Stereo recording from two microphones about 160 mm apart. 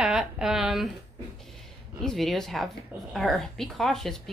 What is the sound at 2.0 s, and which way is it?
Speech, centre (ahead or behind).